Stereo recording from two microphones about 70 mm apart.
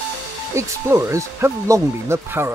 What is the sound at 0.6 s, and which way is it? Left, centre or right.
Speech, right.